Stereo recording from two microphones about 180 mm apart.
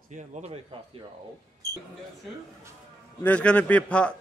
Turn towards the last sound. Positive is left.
turn(degrees=5)  # may be behind; listen again after turning